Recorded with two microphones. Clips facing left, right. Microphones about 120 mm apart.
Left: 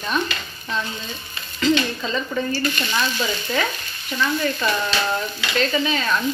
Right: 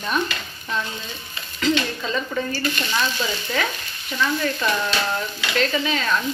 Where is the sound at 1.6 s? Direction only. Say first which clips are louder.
Left 2 dB; 5° right (ahead or behind).